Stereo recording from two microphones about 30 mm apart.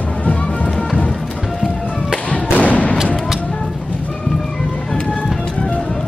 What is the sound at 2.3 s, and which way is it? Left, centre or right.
Thump, left.